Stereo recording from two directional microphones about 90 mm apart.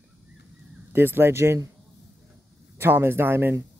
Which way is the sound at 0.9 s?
25° right (ahead or behind).